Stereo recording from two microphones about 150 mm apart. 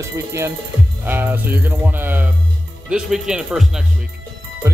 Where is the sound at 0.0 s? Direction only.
20° right (ahead or behind).